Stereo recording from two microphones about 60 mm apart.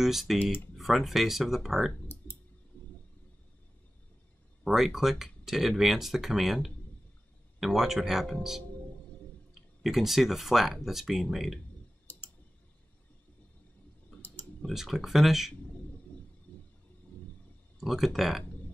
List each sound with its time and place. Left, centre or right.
0.0 s speech: centre
4.6 s speech: centre
14.7 s speech: centre
16.5 s a sound: left
17.7 s speech: centre